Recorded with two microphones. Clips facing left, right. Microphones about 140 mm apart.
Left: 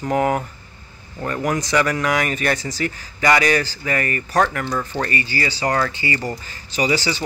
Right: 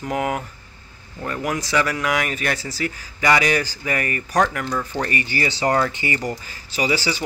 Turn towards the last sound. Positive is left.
turn(degrees=-10)  # may be behind; listen again after turning